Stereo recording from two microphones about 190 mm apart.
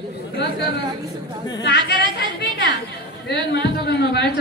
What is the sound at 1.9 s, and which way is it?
Speech, 60° left (ahead or behind).